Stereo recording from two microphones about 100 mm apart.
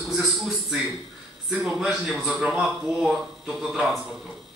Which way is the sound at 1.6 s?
Centre (ahead or behind).